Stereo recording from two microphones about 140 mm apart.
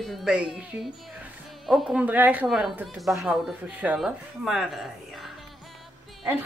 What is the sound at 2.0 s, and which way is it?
Speech, 10° right (ahead or behind).